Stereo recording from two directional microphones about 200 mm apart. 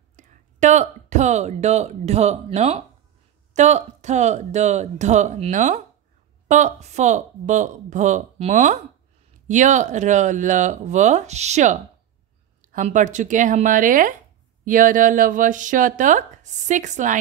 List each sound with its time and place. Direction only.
0.1 s speech: 35° right (ahead or behind)